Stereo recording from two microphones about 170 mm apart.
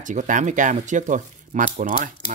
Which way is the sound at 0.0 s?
45° right (ahead or behind).